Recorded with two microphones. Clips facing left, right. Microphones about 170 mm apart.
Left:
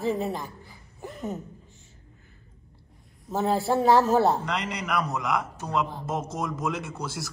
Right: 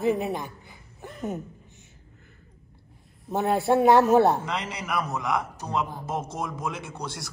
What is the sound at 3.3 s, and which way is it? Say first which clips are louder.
Speech: right 1 dB; centre (ahead or behind).